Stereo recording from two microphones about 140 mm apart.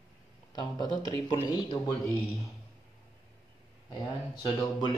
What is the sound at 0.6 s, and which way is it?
Speech, 30° left (ahead or behind).